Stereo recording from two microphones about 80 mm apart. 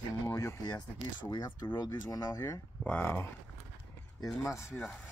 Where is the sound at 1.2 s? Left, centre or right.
Left.